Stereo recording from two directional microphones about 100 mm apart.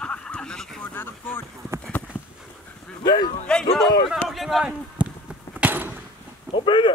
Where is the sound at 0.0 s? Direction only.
10° left (ahead or behind).